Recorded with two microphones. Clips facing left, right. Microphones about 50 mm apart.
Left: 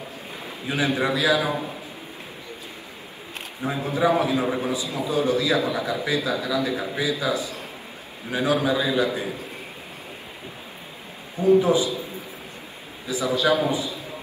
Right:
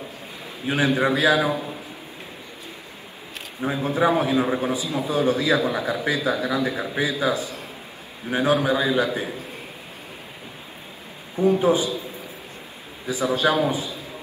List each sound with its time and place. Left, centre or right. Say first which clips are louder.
0.7 s a man's voice: right 3 dB; right
3.9 s a man's voice: right 1 dB; right
11.4 s a man's voice: left 1 dB; right
13.0 s a man's voice: right 1 dB; right